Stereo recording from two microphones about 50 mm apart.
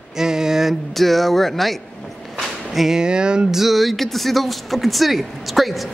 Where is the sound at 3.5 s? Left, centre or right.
Centre.